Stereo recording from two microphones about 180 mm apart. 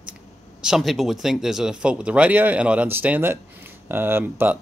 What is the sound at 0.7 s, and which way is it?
Speech, centre (ahead or behind).